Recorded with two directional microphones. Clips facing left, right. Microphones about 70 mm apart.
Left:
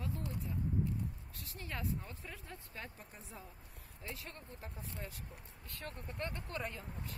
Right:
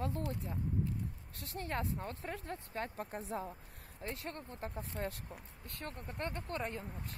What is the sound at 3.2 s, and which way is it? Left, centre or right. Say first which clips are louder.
Speech: right 11 dB; right.